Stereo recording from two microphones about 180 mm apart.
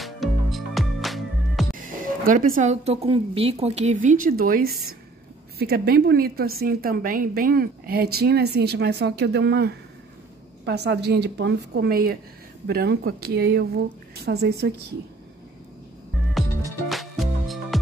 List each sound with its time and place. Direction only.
0.0 s music: centre (ahead or behind)
1.7 s a woman's voice: 50° right (ahead or behind); by 14.7 s 65° right (ahead or behind)
16.9 s music: centre (ahead or behind)